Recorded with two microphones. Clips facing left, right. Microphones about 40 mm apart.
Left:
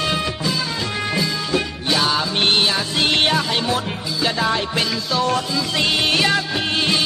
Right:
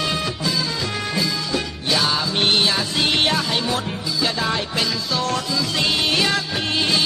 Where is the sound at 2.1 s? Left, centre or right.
Centre.